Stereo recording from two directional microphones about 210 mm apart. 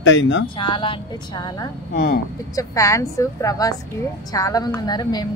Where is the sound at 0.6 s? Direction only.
25° left (ahead or behind).